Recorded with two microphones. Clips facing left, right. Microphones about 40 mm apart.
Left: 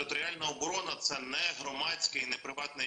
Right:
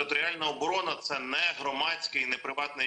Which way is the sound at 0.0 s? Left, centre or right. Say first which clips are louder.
Right 6 dB; right.